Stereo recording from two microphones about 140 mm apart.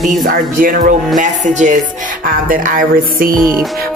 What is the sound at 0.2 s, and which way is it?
Speech, 80° right.